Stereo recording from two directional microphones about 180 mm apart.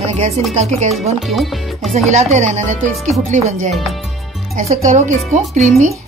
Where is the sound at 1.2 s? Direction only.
Centre (ahead or behind).